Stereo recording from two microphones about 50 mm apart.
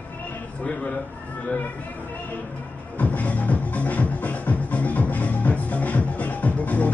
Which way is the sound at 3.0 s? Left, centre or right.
Left.